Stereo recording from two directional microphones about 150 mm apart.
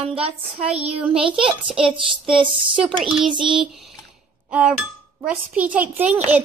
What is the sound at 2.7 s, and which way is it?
A child's voice, centre (ahead or behind).